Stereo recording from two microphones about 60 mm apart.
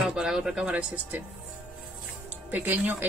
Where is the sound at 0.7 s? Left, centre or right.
Right.